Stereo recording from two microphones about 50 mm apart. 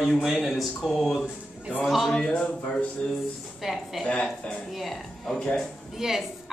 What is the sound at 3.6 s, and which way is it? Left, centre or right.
Speech, centre.